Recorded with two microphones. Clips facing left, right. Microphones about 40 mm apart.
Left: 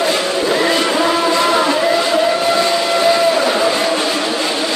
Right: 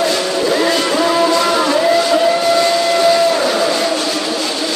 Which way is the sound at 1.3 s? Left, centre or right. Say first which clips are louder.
Even; left.